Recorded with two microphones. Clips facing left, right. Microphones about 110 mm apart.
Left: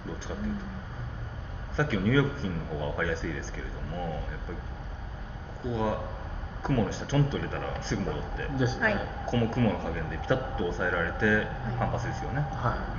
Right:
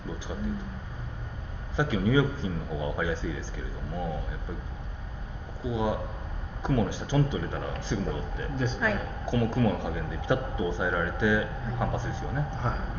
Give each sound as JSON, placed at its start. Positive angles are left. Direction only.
{"t": 0.3, "sound": "a sound", "side_deg": -10}
{"t": 1.8, "sound": "speech", "side_deg": -15}
{"t": 5.6, "sound": "speech", "side_deg": -15}
{"t": 8.8, "sound": "a woman's voice", "side_deg": 0}
{"t": 9.2, "sound": "speech", "side_deg": -15}
{"t": 12.5, "sound": "speech", "side_deg": 15}